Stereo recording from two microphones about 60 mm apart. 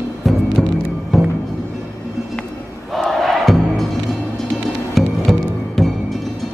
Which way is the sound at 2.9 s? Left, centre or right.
Centre.